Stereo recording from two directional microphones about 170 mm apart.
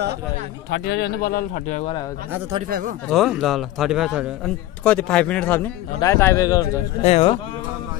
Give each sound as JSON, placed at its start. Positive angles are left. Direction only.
{"t": 0.7, "sound": "speech", "side_deg": 85}
{"t": 3.1, "sound": "speech", "side_deg": 0}
{"t": 4.8, "sound": "speech", "side_deg": 5}
{"t": 7.0, "sound": "speech", "side_deg": 40}